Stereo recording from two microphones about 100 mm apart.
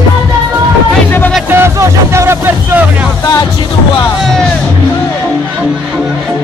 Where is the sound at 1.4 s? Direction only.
25° right (ahead or behind).